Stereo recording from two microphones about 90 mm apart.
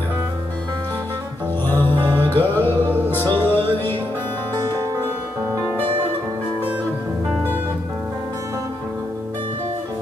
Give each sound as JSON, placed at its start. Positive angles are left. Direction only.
{"t": 1.7, "sound": "music", "side_deg": 20}
{"t": 5.5, "sound": "music", "side_deg": -30}